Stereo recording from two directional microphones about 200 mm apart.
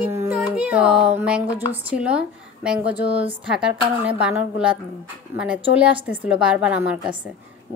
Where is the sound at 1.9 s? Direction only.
5° right (ahead or behind).